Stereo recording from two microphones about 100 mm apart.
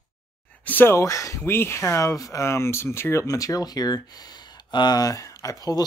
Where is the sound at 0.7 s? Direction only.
20° left (ahead or behind).